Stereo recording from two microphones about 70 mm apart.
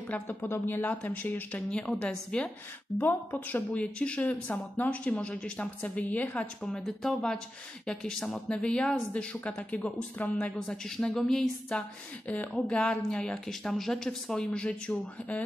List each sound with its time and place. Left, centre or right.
0.1 s speech: left
0.8 s speech: left
3.0 s speech: left
6.6 s speech: centre
12.3 s speech: centre